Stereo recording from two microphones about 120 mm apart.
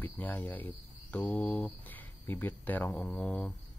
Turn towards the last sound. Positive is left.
turn(degrees=10)  # may be behind; listen again after turning